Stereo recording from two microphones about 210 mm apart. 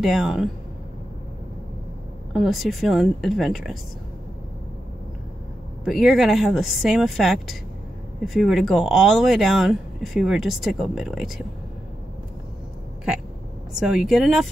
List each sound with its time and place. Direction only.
0.0 s speech: centre (ahead or behind)
2.3 s speech: centre (ahead or behind)
5.9 s speech: centre (ahead or behind)
13.7 s speech: 5° right (ahead or behind)